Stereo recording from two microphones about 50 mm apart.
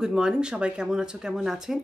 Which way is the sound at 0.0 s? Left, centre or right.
Centre.